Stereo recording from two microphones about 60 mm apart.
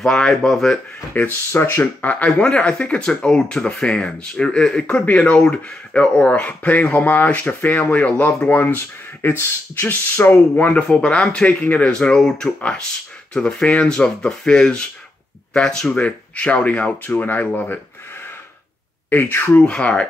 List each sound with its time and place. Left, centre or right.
0.0 s speech: centre
1.1 s speech: left
1.5 s speech: left
1.8 s speech: left
10.9 s speech: centre
19.0 s speech: left
19.6 s speech: centre